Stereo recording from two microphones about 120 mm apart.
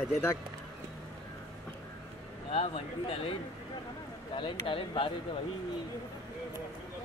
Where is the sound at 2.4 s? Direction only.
55° left (ahead or behind).